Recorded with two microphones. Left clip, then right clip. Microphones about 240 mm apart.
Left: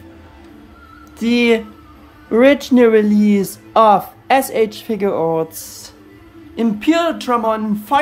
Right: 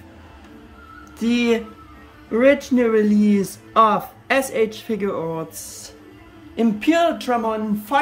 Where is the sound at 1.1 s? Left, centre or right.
Centre.